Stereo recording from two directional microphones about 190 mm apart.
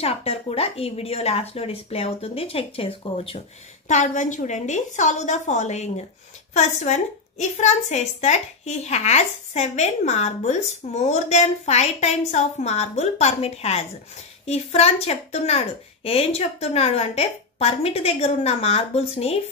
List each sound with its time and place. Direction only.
0.0 s a woman's voice: 30° left (ahead or behind)
3.9 s a woman's voice: 40° left (ahead or behind)